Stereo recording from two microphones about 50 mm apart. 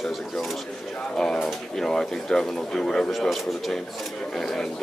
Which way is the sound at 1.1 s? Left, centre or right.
Centre.